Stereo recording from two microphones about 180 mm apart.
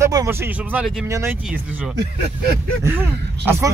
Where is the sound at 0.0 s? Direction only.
15° right (ahead or behind).